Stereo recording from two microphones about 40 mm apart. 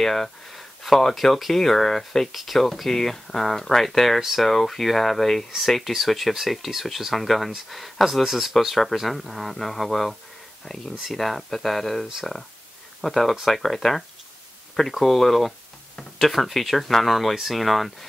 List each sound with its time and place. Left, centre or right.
0.0 s speech: centre